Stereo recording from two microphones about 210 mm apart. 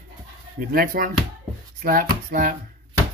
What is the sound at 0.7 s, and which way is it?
Speech, 45° right (ahead or behind).